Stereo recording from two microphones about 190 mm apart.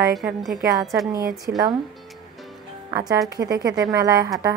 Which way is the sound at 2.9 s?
15° right (ahead or behind).